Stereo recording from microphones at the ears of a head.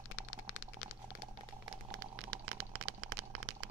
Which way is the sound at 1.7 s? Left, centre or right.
Right.